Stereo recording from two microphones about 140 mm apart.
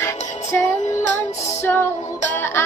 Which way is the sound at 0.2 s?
55° left (ahead or behind).